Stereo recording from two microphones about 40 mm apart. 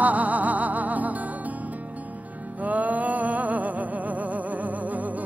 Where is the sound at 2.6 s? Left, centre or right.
Right.